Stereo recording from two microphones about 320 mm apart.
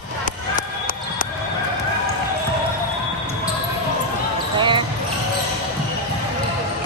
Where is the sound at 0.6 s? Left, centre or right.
Left.